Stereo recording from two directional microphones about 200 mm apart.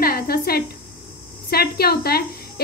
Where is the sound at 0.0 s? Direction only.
50° left (ahead or behind).